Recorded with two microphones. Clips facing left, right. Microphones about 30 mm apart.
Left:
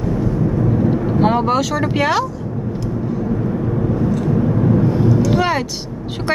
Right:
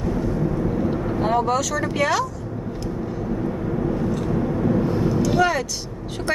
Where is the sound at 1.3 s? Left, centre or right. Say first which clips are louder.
Left 4 dB; left.